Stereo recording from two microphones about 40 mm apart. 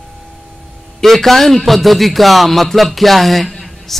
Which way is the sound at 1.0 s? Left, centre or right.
Centre.